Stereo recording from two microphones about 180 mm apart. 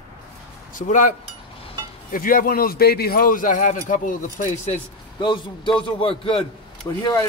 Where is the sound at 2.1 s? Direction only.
50° left (ahead or behind).